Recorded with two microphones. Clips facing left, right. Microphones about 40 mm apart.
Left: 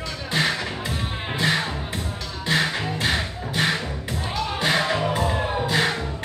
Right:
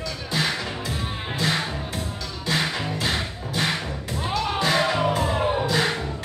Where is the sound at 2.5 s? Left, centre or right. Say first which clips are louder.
Left 2 dB; left.